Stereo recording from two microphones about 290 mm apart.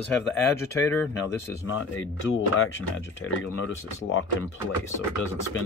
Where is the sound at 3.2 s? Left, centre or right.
Left.